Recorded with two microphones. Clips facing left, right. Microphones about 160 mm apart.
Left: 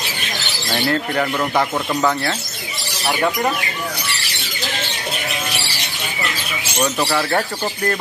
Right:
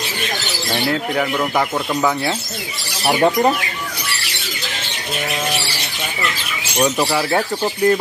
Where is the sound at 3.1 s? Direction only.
25° right (ahead or behind).